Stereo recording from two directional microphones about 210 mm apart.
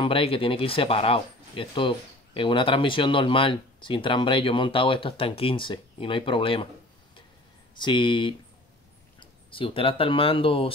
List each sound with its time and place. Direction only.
0.0 s speech: 25° left (ahead or behind)
7.8 s speech: 20° left (ahead or behind)